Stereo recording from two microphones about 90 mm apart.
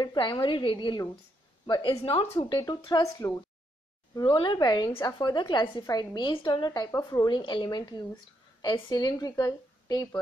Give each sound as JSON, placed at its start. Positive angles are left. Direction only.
{"t": 0.0, "sound": "a woman's voice", "side_deg": 55}
{"t": 2.3, "sound": "speech", "side_deg": 55}
{"t": 4.1, "sound": "a woman's voice", "side_deg": 55}